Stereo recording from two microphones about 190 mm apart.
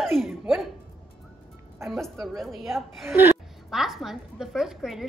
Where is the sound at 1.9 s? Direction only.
Centre (ahead or behind).